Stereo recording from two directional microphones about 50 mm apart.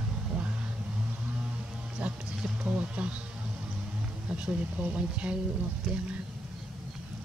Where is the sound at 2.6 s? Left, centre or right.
Right.